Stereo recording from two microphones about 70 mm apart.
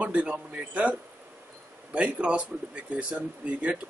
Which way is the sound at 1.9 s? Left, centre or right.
Centre.